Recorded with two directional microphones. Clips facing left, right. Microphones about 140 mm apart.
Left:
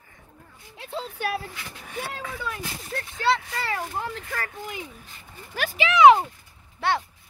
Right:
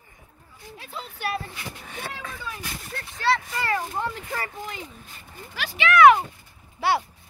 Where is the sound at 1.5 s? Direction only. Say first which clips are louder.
Right 3 dB; 25° right (ahead or behind).